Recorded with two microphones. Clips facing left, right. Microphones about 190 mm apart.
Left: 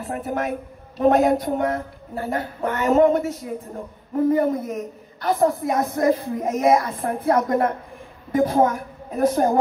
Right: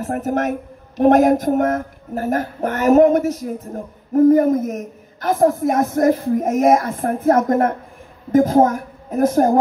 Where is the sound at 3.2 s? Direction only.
90° right.